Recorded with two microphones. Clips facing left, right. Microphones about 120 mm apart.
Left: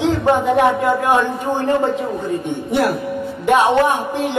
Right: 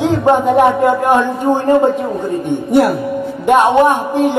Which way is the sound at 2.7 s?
45° right (ahead or behind).